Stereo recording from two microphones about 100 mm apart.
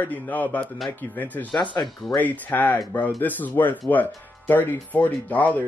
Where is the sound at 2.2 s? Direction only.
15° left (ahead or behind).